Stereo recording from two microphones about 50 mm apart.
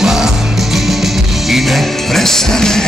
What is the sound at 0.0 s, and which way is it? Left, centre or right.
Music, centre.